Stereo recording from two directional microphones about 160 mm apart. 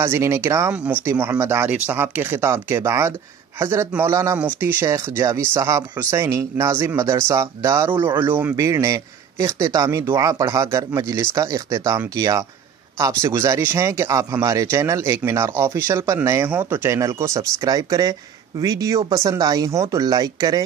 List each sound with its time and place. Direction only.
0.0 s speech: 15° right (ahead or behind)